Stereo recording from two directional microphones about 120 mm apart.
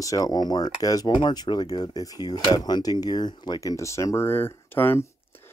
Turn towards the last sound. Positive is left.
turn(degrees=15)  # may be behind; listen again after turning